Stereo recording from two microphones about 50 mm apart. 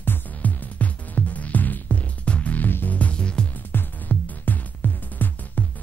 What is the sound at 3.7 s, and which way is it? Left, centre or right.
Music, left.